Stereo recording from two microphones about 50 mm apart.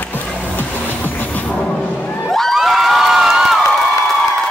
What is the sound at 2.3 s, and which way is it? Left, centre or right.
Crowd, centre.